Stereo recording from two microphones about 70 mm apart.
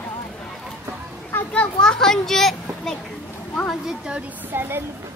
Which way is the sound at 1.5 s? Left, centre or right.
Centre.